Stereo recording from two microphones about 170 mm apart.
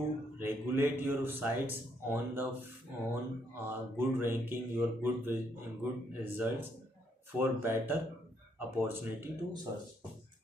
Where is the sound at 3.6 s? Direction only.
15° right (ahead or behind).